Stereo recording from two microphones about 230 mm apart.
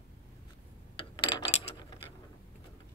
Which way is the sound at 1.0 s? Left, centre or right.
Centre.